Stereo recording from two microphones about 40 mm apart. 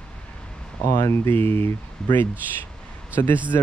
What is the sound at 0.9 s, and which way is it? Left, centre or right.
Speech, left.